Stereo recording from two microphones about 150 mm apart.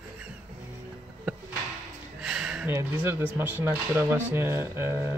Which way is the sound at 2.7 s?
15° right (ahead or behind).